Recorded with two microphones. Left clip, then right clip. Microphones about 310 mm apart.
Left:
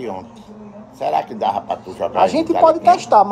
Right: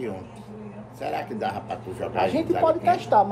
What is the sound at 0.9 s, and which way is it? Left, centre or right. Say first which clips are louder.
A man's voice: left 10 dB; centre.